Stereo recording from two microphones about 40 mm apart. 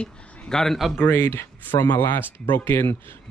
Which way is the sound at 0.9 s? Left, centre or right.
Left.